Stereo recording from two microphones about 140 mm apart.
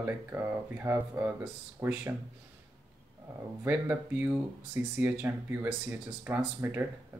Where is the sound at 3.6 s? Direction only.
15° right (ahead or behind).